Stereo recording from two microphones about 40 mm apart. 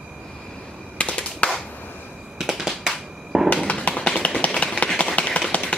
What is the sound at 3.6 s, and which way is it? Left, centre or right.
Tap, left.